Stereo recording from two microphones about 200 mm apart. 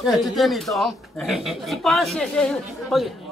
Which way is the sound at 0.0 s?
Centre (ahead or behind).